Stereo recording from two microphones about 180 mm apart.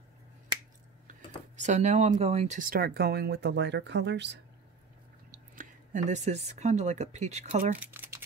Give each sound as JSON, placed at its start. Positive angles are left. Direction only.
{"t": 1.6, "sound": "speech", "side_deg": -40}
{"t": 5.6, "sound": "speech", "side_deg": -45}
{"t": 7.8, "sound": "a sound", "side_deg": -10}